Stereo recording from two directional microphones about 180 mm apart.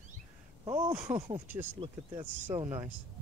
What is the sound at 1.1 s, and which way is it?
Speech, 25° right (ahead or behind).